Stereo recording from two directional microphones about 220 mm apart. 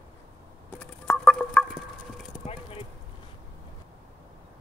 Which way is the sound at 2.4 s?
25° left (ahead or behind).